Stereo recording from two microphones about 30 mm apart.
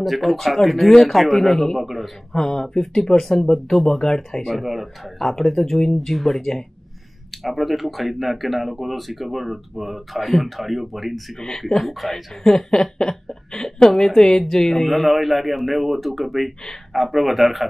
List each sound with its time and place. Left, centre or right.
0.0 s a man's voice: centre
2.3 s speech: centre
3.6 s speech: centre
11.3 s speech: centre
11.6 s speech: centre
12.4 s speech: centre